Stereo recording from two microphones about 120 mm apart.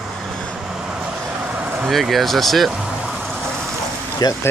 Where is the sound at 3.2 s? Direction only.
5° left (ahead or behind).